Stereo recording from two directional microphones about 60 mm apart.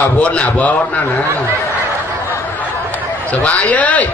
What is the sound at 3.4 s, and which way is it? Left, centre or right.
Speech, left.